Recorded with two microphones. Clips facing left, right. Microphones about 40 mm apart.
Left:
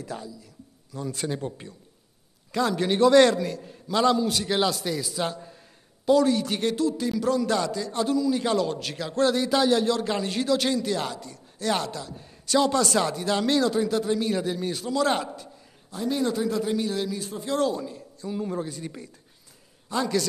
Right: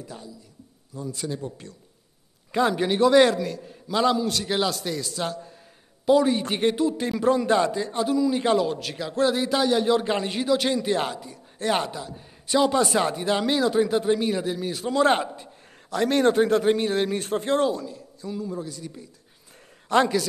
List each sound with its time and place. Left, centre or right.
1.1 s speech: left
2.5 s a man's voice: centre
2.9 s a man's voice: centre
6.0 s a man's voice: centre
7.9 s a man's voice: centre
8.6 s a man's voice: centre
9.8 s a man's voice: right
14.3 s a man's voice: centre
14.9 s a man's voice: right
15.9 s a man's voice: right
17.7 s a woman's voice: centre
18.4 s speech: left
19.9 s a woman's voice: right